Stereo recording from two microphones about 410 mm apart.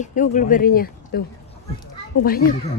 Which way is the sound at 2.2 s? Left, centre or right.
Left.